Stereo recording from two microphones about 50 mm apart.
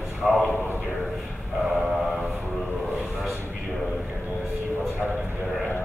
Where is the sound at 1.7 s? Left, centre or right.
Centre.